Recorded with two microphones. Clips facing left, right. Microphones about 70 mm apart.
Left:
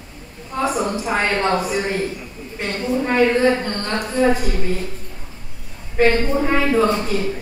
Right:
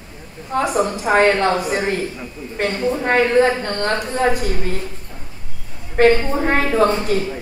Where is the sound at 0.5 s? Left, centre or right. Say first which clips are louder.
Right 2 dB; right.